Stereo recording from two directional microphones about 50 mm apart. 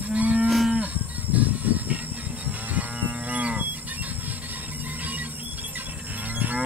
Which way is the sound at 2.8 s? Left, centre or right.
Right.